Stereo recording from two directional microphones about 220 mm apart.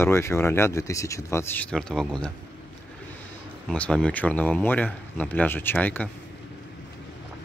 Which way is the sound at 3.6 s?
5° left (ahead or behind).